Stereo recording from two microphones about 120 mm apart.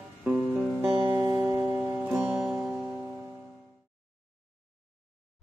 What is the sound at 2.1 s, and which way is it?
Music, 5° right (ahead or behind).